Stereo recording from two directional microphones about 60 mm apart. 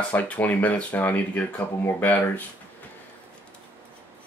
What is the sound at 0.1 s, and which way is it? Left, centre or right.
Speech, left.